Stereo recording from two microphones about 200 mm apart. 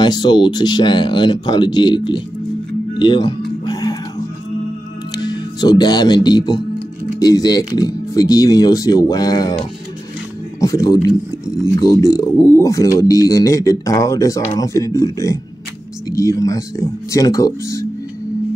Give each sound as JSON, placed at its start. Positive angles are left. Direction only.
{"t": 0.0, "sound": "speech", "side_deg": 20}
{"t": 3.6, "sound": "music", "side_deg": 20}
{"t": 5.1, "sound": "speech", "side_deg": 20}
{"t": 10.6, "sound": "a man's voice", "side_deg": 15}